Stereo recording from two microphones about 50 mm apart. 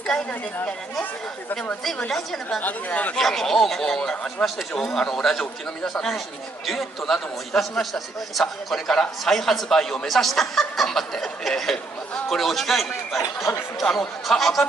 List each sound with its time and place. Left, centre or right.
2.0 s speech: centre
2.6 s speech: left
3.2 s speech: centre
8.8 s speech: centre